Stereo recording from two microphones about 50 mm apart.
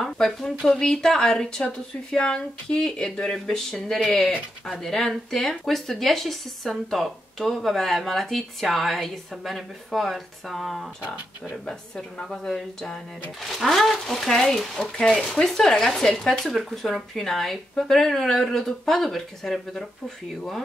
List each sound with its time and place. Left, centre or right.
0.0 s a sound: centre
0.7 s speech: centre
12.3 s speech: centre
14.8 s speech: centre
15.1 s speech: centre
15.4 s speech: centre